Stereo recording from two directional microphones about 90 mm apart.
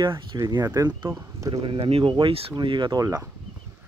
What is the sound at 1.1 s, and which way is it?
Speech, 40° right (ahead or behind).